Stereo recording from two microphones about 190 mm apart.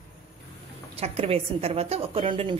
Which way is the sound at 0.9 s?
35° right (ahead or behind).